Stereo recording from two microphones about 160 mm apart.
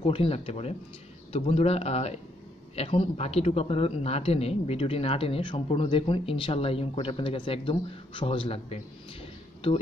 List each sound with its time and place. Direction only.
0.0 s speech: 35° left (ahead or behind)